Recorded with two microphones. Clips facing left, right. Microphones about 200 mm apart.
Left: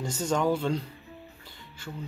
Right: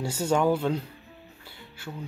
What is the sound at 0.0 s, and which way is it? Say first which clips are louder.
Speech: right 3 dB; 10° right (ahead or behind).